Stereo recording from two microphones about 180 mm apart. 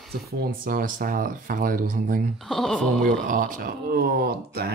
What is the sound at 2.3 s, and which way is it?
Speech, centre (ahead or behind).